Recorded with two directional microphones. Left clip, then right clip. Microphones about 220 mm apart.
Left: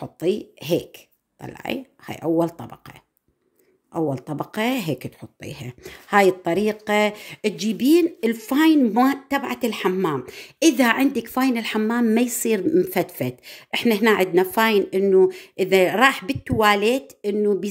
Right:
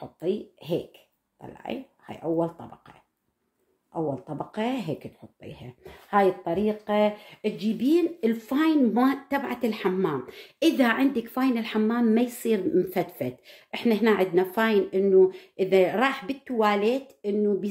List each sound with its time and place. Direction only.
0.0 s speech: 50° left (ahead or behind)